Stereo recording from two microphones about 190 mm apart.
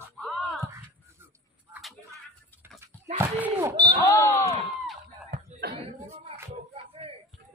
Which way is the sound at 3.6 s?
20° right (ahead or behind).